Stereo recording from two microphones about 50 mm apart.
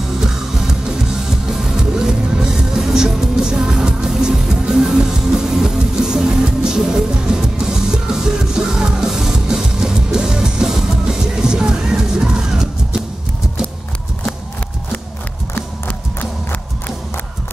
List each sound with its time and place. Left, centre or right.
0.2 s music: centre
15.5 s music: left